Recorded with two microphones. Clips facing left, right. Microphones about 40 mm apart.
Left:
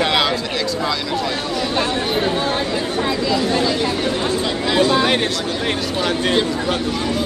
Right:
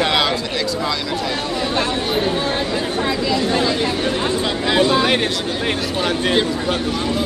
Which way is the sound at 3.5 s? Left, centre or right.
Centre.